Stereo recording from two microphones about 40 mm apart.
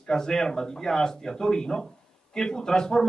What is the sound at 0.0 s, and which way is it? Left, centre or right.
A man's voice, centre.